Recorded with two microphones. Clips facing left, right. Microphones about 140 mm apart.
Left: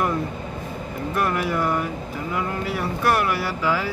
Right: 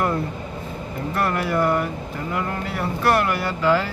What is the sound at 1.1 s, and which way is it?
Speech, 15° left (ahead or behind).